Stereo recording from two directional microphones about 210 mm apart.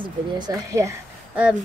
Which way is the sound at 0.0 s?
20° right (ahead or behind).